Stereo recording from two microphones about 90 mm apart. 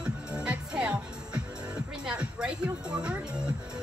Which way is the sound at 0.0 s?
10° right (ahead or behind).